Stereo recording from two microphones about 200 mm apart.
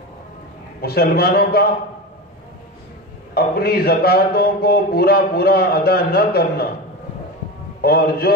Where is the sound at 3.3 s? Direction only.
50° left (ahead or behind).